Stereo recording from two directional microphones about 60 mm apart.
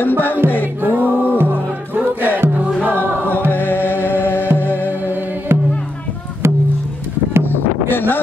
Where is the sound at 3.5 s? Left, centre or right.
Left.